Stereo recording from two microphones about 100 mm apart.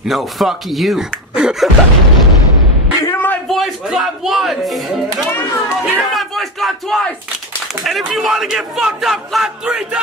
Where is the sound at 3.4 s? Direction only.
Centre (ahead or behind).